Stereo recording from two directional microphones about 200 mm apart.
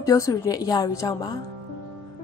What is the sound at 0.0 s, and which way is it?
A woman's voice, 15° left (ahead or behind).